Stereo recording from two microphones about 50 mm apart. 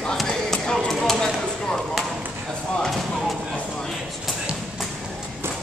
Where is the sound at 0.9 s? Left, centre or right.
Centre.